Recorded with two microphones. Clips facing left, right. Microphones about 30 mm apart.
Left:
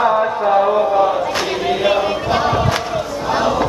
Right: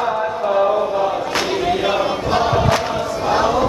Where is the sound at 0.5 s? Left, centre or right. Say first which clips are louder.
Left 3 dB; centre.